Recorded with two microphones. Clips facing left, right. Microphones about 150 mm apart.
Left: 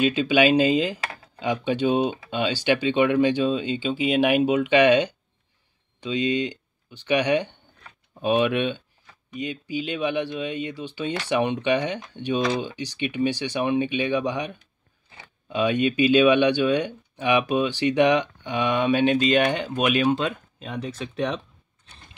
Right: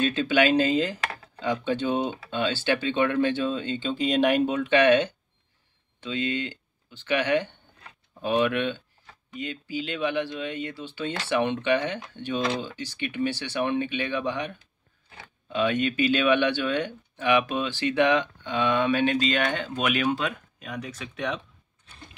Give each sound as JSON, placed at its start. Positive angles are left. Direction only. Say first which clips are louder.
{"t": 0.0, "sound": "speech", "louder": "left 3 dB", "side_deg": 10}